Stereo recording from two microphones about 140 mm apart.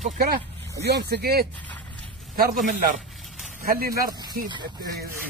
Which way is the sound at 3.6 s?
90° right.